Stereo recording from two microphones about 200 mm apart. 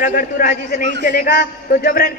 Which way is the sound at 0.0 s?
45° left (ahead or behind).